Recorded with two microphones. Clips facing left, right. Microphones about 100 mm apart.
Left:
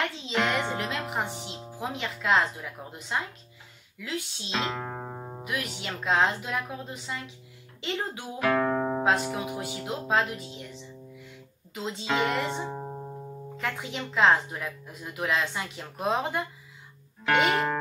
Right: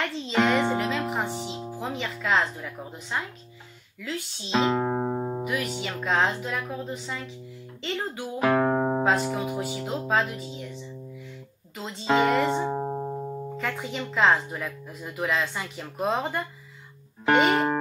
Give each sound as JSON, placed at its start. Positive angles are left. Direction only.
{"t": 0.0, "sound": "speech", "side_deg": 0}
{"t": 4.6, "sound": "music", "side_deg": -30}
{"t": 5.4, "sound": "speech", "side_deg": 0}
{"t": 8.4, "sound": "music", "side_deg": -25}
{"t": 9.0, "sound": "speech", "side_deg": 0}
{"t": 10.3, "sound": "music", "side_deg": 0}
{"t": 11.7, "sound": "speech", "side_deg": 0}
{"t": 12.6, "sound": "music", "side_deg": -40}
{"t": 13.6, "sound": "speech", "side_deg": 0}